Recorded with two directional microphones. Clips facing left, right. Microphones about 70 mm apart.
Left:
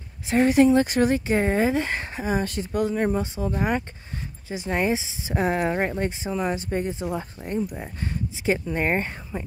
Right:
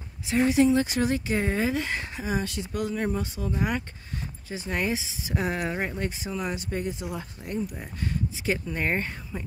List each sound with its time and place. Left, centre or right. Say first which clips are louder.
0.3 s speech: left 4 dB; left